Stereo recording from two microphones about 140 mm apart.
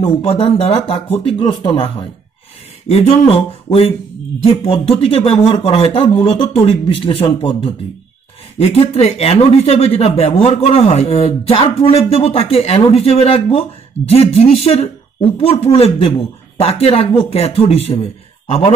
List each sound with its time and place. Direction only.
0.0 s speech: 45° left (ahead or behind)
1.4 s speech: 35° left (ahead or behind)